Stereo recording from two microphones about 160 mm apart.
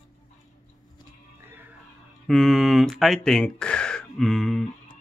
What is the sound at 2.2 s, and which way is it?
Speech, centre (ahead or behind).